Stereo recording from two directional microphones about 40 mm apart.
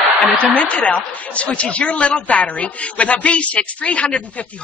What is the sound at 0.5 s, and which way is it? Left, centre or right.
A man's voice, left.